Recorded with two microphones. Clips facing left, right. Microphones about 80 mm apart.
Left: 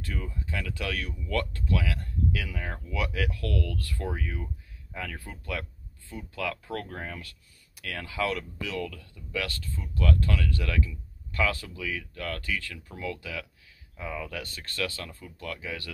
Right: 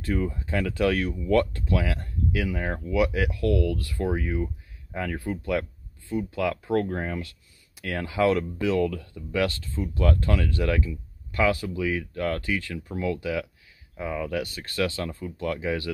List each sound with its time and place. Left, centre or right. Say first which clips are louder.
0.0 s speech: right 10 dB; right
9.4 s speech: right 9 dB; right